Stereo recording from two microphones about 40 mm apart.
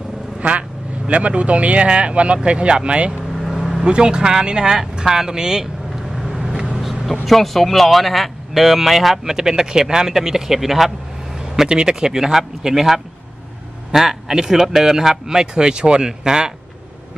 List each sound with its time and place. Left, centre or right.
0.4 s speech: right
3.4 s vehicle: centre
3.8 s speech: right
6.1 s vehicle: centre
7.2 s speech: centre